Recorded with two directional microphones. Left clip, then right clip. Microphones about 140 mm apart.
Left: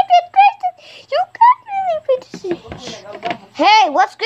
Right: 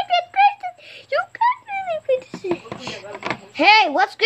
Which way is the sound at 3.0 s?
15° right (ahead or behind).